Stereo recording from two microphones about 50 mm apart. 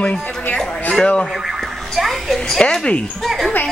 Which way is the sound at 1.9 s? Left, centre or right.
Centre.